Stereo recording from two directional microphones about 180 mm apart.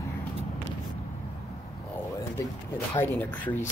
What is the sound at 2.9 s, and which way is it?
Speech, 10° left (ahead or behind).